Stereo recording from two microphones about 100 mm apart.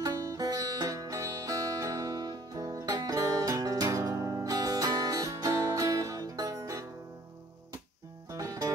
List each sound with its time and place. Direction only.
0.0 s music: 30° right (ahead or behind)
8.3 s music: 35° right (ahead or behind)